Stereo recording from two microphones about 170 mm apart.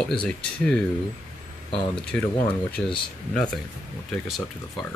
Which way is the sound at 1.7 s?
25° left (ahead or behind).